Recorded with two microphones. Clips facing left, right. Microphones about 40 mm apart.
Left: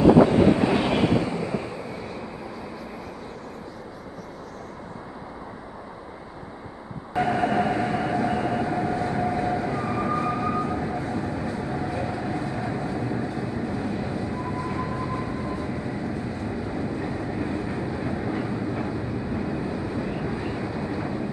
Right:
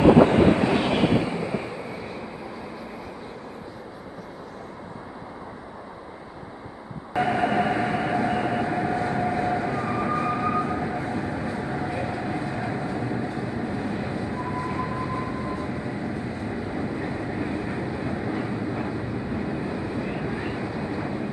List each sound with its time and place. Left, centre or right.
0.0 s train: right
0.6 s train: centre
7.2 s train: centre
20.1 s vehicle: centre